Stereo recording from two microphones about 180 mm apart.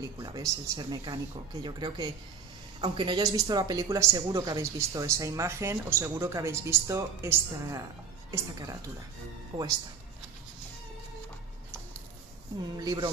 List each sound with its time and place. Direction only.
0.0 s speech: 20° right (ahead or behind)
12.7 s speech: 20° right (ahead or behind)